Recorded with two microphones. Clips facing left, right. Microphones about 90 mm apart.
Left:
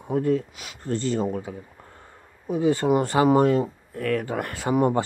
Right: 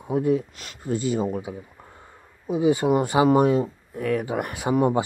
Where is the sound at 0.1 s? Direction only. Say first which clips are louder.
Right 1 dB; 15° right (ahead or behind).